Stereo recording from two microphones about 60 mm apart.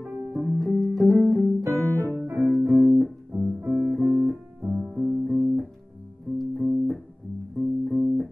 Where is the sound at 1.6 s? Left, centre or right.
Right.